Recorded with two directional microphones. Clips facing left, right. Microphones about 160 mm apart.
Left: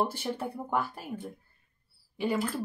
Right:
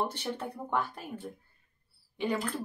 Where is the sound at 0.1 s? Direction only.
10° left (ahead or behind).